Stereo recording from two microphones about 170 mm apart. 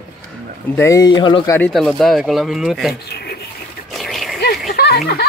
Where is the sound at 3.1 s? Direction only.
70° left (ahead or behind).